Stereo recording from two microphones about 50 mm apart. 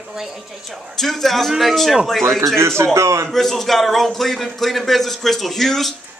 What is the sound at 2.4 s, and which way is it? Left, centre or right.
Speech, right.